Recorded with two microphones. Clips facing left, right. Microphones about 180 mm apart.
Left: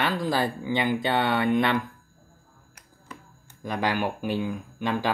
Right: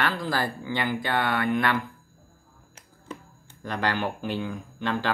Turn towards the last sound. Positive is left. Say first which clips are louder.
# left 1 dB
turn(degrees=10)  # may be behind; listen again after turning